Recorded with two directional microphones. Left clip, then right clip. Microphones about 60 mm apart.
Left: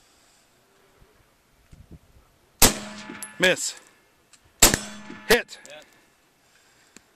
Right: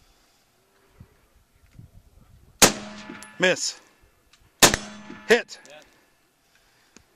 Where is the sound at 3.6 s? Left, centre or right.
Right.